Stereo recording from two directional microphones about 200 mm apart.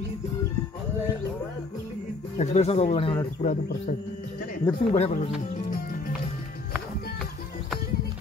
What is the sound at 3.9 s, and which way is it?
Speech, 40° left (ahead or behind).